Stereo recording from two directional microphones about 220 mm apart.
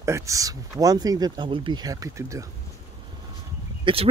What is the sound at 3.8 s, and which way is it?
Speech, 25° right (ahead or behind).